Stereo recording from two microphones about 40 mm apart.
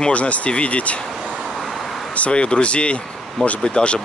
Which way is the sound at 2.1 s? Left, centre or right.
Left.